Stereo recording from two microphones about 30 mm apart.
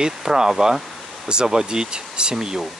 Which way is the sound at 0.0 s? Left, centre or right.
Right.